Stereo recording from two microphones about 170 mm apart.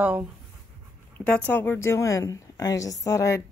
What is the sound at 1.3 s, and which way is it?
A woman's voice, 10° left (ahead or behind).